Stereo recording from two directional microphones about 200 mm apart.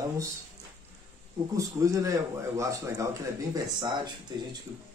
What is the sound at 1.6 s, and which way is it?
Speech, 15° right (ahead or behind).